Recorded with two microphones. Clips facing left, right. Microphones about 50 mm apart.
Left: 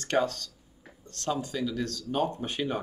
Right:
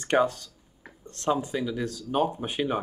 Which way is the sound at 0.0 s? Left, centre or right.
Centre.